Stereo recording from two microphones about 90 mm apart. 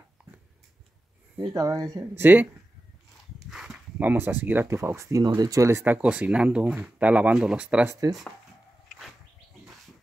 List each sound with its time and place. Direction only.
1.4 s speech: 45° right (ahead or behind)
2.1 s speech: 25° right (ahead or behind)
3.3 s horse: 5° right (ahead or behind)
4.0 s speech: 20° right (ahead or behind)
5.2 s speech: 45° right (ahead or behind); by 5.9 s 30° right (ahead or behind)
5.9 s speech: 15° right (ahead or behind)
7.8 s speech: 35° right (ahead or behind)